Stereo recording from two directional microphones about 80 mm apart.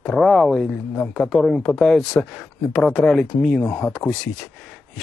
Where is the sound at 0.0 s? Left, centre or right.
Centre.